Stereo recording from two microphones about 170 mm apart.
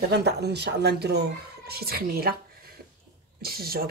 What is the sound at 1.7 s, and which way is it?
Speech, 65° right (ahead or behind).